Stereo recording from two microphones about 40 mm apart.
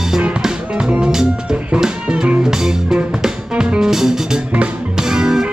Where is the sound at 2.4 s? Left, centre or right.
Centre.